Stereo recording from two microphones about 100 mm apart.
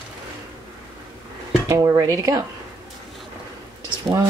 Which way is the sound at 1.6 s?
30° right (ahead or behind).